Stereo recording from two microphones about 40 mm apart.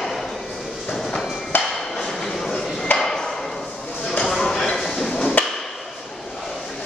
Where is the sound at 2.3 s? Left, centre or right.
Centre.